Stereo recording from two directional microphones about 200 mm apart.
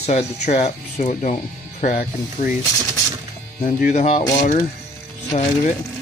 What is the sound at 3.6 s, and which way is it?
Speech, 35° left (ahead or behind).